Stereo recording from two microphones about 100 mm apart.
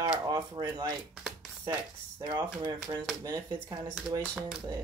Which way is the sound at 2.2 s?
60° right (ahead or behind).